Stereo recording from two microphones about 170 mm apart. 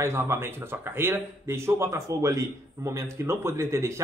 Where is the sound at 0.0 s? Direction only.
15° right (ahead or behind).